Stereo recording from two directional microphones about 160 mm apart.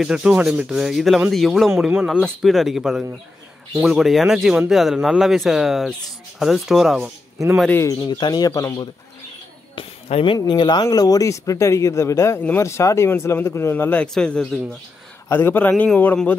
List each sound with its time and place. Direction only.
0.0 s a man's voice: 5° right (ahead or behind)
7.7 s speech: 20° left (ahead or behind)
9.8 s speech: 35° left (ahead or behind); by 16.3 s 10° left (ahead or behind)